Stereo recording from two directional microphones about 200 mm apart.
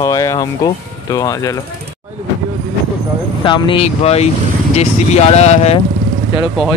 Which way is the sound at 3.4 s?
25° left (ahead or behind).